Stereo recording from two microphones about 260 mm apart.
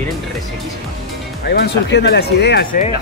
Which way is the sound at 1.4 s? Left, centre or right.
Left.